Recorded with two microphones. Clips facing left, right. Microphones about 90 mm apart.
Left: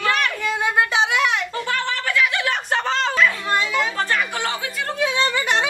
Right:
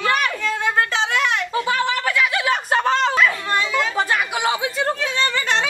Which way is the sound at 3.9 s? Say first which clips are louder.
Right 2 dB; 10° right (ahead or behind).